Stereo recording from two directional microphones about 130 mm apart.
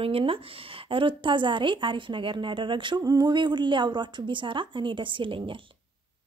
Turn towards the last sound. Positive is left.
turn(degrees=-40)  # may be behind; listen again after turning